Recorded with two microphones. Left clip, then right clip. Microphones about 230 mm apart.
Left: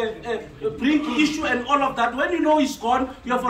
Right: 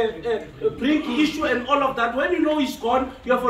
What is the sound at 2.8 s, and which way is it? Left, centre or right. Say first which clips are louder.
Speech: right 2 dB; right.